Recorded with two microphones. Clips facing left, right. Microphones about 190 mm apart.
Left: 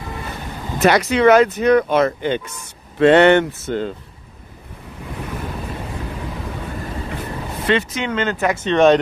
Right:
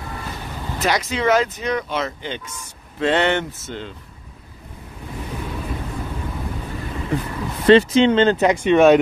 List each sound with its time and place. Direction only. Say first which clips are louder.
0.8 s speech: left 7 dB; 60° left (ahead or behind)
7.6 s speech: right 8 dB; 30° right (ahead or behind); by 9.0 s 10° right (ahead or behind)